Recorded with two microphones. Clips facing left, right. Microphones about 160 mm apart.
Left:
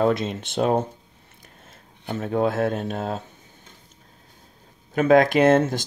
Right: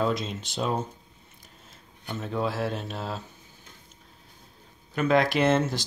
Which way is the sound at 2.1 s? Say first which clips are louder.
Left 7 dB; 55° left (ahead or behind).